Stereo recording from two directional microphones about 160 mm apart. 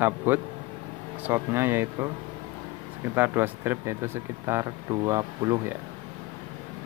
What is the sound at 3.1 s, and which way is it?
Speech, 10° right (ahead or behind).